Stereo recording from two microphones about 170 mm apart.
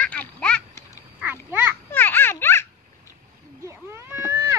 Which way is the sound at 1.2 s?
10° right (ahead or behind).